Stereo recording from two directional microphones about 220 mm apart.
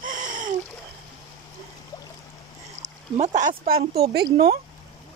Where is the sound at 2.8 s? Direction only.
30° right (ahead or behind).